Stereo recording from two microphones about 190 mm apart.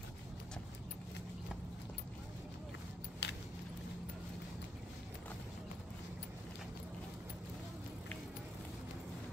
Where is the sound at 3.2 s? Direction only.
65° left (ahead or behind).